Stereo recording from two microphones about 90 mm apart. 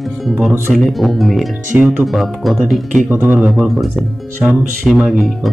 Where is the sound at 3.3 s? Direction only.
5° right (ahead or behind).